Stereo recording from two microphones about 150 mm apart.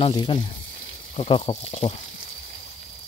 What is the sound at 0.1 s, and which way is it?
Speech, 35° left (ahead or behind).